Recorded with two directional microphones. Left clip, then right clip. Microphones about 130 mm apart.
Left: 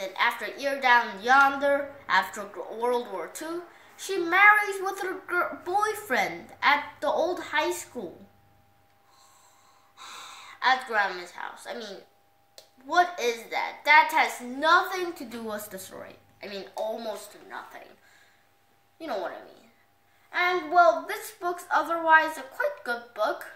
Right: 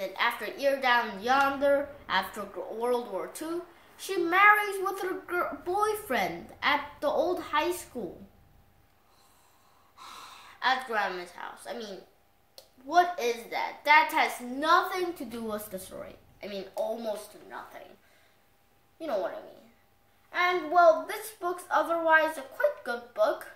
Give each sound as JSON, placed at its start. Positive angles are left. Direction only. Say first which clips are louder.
{"t": 0.0, "sound": "a woman's voice", "louder": "left 3 dB", "side_deg": -10}
{"t": 10.6, "sound": "a woman's voice", "louder": "left 4 dB", "side_deg": -10}
{"t": 12.8, "sound": "a woman's voice", "louder": "left 1 dB", "side_deg": -5}
{"t": 18.9, "sound": "a woman's voice", "louder": "right 1 dB", "side_deg": -5}